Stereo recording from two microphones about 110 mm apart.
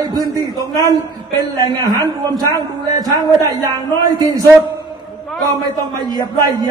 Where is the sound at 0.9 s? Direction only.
35° right (ahead or behind).